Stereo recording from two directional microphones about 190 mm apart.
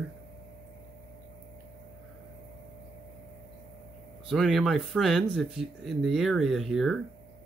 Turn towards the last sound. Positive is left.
turn(degrees=0)  # may be behind; listen again after turning